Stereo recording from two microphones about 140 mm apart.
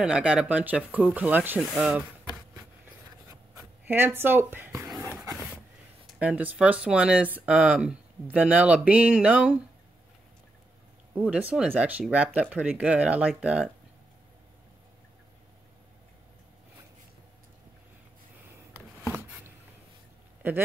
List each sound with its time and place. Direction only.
0.0 s speech: 5° right (ahead or behind)
3.5 s speech: 15° right (ahead or behind)
4.8 s a sound: 25° right (ahead or behind)
6.0 s speech: 10° right (ahead or behind)
11.1 s speech: 10° right (ahead or behind)